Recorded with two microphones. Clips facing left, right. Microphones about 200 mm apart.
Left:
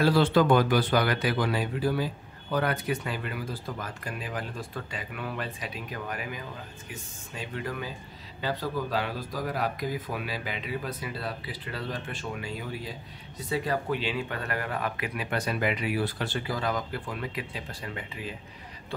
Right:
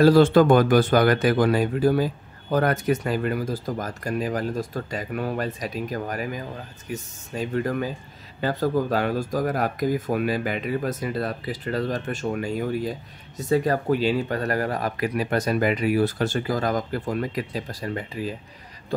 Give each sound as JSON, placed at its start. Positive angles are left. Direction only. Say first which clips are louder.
{"t": 0.0, "sound": "speech", "louder": "right 7 dB", "side_deg": -45}